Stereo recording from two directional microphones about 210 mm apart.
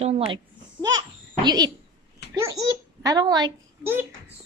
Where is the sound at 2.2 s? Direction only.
50° left (ahead or behind).